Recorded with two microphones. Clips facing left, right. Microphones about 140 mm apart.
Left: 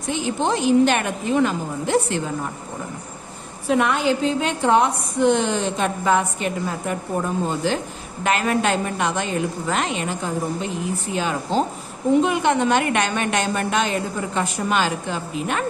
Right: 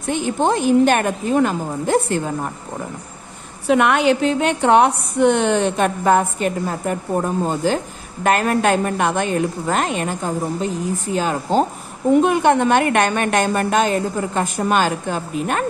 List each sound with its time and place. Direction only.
0.0 s a woman's voice: 55° right (ahead or behind)
3.6 s a woman's voice: 70° right (ahead or behind); by 15.6 s 50° right (ahead or behind)